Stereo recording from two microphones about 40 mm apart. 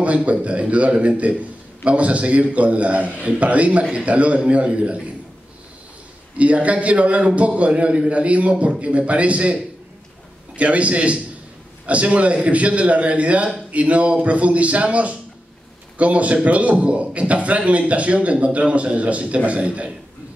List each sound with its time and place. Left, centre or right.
0.0 s a man's voice: right
6.3 s a man's voice: right